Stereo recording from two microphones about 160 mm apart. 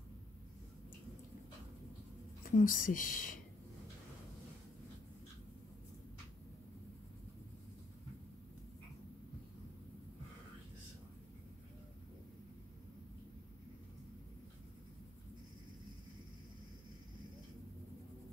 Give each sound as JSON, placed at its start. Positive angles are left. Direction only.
{"t": 2.4, "sound": "a woman's voice", "side_deg": 60}